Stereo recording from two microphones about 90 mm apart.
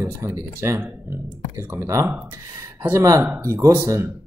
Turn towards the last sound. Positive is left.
turn(degrees=-30)  # may be behind; listen again after turning